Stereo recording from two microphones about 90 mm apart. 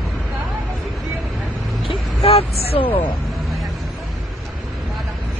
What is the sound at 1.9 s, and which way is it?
Vehicle, 80° left.